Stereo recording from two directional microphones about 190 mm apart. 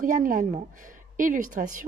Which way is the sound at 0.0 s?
45° right (ahead or behind).